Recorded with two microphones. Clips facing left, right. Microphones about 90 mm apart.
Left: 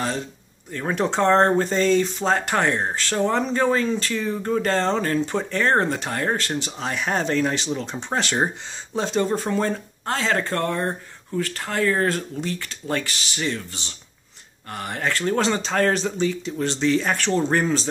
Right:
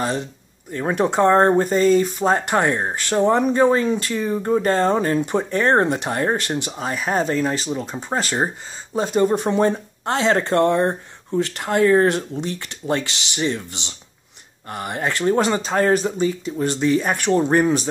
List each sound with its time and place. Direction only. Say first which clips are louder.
0.7 s speech: right 3 dB; 15° right (ahead or behind)
2.3 s speech: even; 15° right (ahead or behind)